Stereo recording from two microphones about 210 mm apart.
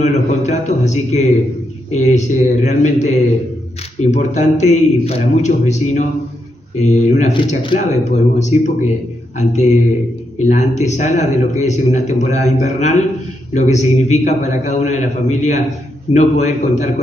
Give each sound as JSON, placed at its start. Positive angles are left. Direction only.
{"t": 0.0, "sound": "a man's voice", "side_deg": 35}